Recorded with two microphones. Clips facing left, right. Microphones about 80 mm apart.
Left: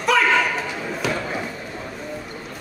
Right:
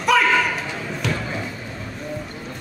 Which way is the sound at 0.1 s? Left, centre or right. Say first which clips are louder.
Even; centre.